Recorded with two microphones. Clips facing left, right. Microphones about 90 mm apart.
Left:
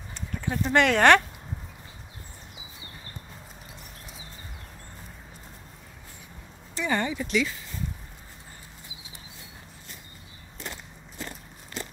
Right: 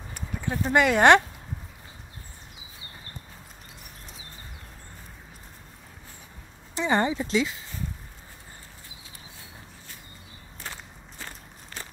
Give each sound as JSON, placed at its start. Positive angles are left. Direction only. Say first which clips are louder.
{"t": 0.1, "sound": "clip-clop", "louder": "even", "side_deg": -10}
{"t": 6.7, "sound": "speech", "louder": "right 3 dB", "side_deg": -25}